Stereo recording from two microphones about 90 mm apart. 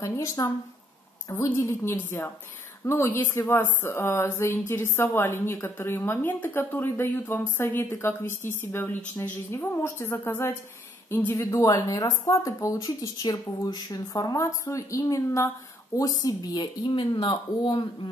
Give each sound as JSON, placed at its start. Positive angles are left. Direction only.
{"t": 0.0, "sound": "a woman's voice", "side_deg": 35}
{"t": 11.3, "sound": "speech", "side_deg": 40}